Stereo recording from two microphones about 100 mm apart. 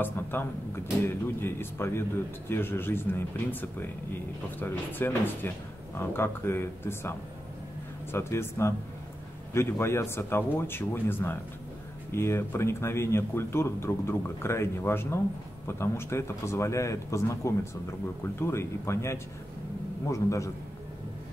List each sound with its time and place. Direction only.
0.0 s speech: 20° left (ahead or behind)
4.6 s a man's voice: 20° left (ahead or behind)